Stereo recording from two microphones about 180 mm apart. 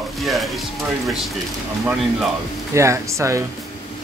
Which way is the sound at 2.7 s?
15° right (ahead or behind).